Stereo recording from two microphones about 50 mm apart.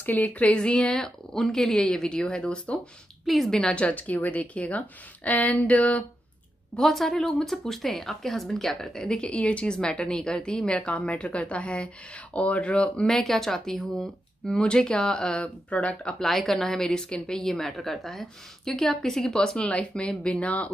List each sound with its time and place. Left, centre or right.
0.0 s a woman's voice: left
3.3 s a woman's voice: centre
3.5 s a woman's voice: left
6.8 s a woman's voice: centre
13.2 s a woman's voice: centre; by 16.2 s left
16.2 s a woman's voice: centre; by 20.7 s left